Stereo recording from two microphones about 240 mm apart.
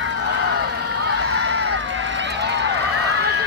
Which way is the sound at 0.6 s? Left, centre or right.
Right.